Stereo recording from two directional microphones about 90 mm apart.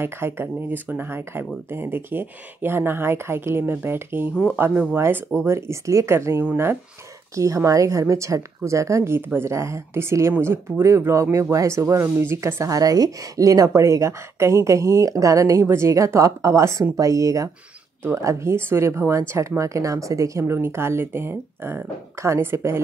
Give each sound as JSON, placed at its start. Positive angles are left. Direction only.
{"t": 0.0, "sound": "speech", "side_deg": -25}